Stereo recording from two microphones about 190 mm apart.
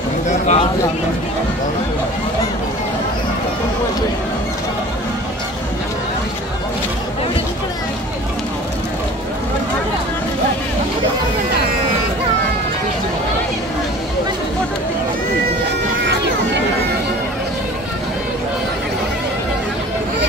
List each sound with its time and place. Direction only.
0.3 s speech: 35° left (ahead or behind)